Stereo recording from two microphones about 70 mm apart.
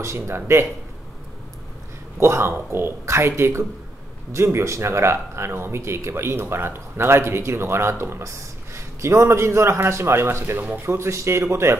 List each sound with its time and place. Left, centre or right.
0.0 s speech: right
2.1 s speech: right
11.0 s speech: right